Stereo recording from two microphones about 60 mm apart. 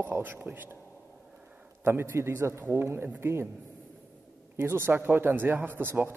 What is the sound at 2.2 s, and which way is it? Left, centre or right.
Speech, right.